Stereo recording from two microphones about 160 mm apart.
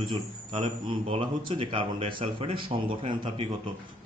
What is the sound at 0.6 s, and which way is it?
A man's voice, 35° right (ahead or behind).